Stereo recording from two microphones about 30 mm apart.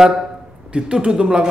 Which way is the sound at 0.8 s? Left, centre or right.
Right.